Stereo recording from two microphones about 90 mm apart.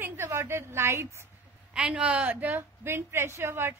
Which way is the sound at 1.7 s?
10° right (ahead or behind).